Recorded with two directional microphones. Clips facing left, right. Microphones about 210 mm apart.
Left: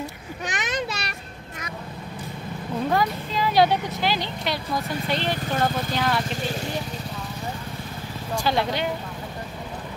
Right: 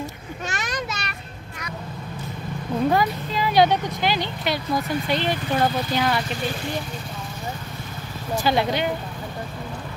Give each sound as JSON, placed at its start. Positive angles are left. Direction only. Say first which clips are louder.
{"t": 0.5, "sound": "a sound", "louder": "left 2 dB", "side_deg": 20}
{"t": 2.9, "sound": "speech", "louder": "right 2 dB", "side_deg": -5}
{"t": 8.4, "sound": "speech", "louder": "right 2 dB", "side_deg": 0}